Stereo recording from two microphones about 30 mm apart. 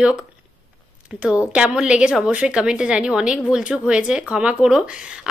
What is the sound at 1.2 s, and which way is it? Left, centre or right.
Speech, right.